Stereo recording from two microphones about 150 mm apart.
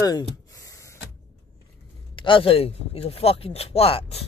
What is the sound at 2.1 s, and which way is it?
Speech, 35° left (ahead or behind).